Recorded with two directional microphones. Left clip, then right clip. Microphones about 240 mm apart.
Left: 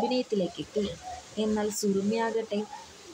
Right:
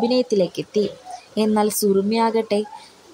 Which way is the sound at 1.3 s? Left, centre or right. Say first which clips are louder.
Right 10 dB; right.